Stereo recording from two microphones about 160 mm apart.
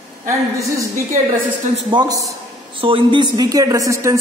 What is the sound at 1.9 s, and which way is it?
Speech, 25° right (ahead or behind).